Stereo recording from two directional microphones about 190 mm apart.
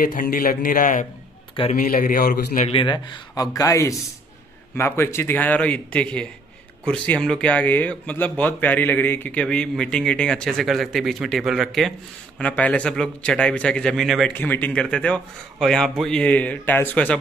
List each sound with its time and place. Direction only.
0.1 s a man's voice: 45° left (ahead or behind)
2.7 s a man's voice: 25° left (ahead or behind); by 17.2 s 10° left (ahead or behind)